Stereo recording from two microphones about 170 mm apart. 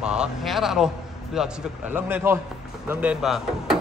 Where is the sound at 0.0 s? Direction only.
5° right (ahead or behind).